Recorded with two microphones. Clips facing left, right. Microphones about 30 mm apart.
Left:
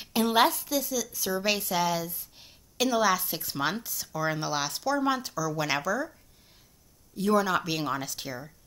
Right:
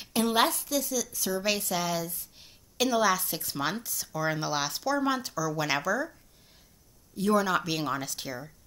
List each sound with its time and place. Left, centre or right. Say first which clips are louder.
0.0 s a woman's voice: left 2 dB; centre
7.2 s a woman's voice: left 1 dB; centre